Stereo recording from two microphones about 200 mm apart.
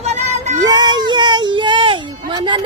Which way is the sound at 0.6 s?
20° right (ahead or behind).